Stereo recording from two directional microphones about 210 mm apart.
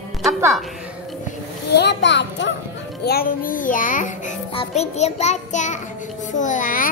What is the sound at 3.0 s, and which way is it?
A child's voice, 45° left (ahead or behind).